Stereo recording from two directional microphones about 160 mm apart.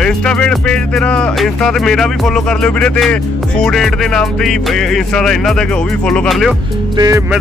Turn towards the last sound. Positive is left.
turn(degrees=-20)  # may be behind; listen again after turning